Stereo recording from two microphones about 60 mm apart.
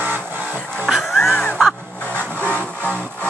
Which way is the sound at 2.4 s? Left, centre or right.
Right.